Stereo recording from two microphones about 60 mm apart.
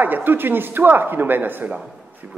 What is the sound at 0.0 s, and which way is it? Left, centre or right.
Speech, right.